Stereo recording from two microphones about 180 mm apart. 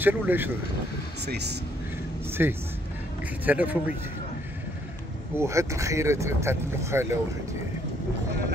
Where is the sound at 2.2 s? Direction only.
15° right (ahead or behind).